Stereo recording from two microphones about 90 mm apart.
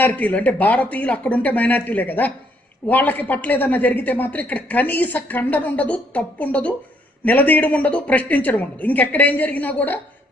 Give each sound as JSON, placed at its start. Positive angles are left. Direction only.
{"t": 0.0, "sound": "a woman's voice", "side_deg": 15}